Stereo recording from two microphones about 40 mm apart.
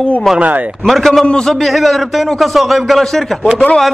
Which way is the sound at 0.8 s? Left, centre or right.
Centre.